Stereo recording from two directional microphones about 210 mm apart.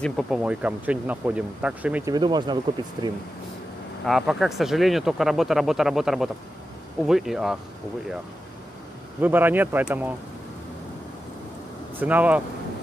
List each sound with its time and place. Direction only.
0.0 s speech: centre (ahead or behind)
2.1 s speech: 20° right (ahead or behind)
4.0 s speech: centre (ahead or behind)
9.2 s speech: 10° right (ahead or behind)
12.0 s speech: 5° right (ahead or behind)